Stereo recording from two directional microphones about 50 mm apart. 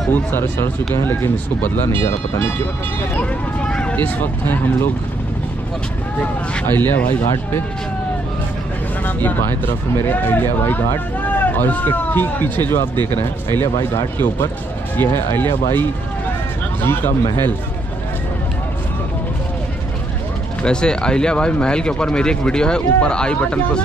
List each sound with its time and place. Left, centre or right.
0.1 s speech: left
3.2 s speech: left
6.1 s speech: left
6.7 s speech: left
9.0 s speech: left
16.8 s speech: left
20.6 s speech: centre